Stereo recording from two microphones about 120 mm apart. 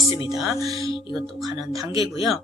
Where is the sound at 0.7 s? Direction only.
45° left (ahead or behind).